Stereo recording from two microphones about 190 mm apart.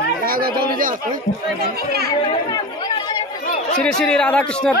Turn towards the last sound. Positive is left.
turn(degrees=5)  # may be behind; listen again after turning